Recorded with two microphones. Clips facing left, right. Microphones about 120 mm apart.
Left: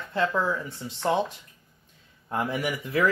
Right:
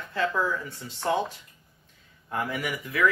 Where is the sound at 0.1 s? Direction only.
20° left (ahead or behind).